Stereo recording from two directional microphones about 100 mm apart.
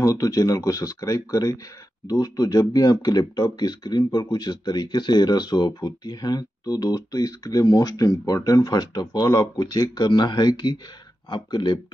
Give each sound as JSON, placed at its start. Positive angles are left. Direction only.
{"t": 0.0, "sound": "speech", "side_deg": 35}